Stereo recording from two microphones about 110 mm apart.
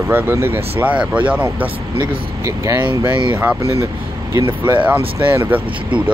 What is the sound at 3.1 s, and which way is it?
Speech, 45° right (ahead or behind).